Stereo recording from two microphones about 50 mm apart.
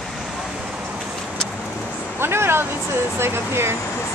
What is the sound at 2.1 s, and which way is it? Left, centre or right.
Speech, right.